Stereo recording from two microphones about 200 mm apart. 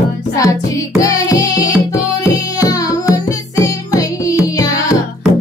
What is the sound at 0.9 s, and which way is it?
Music, 15° left (ahead or behind).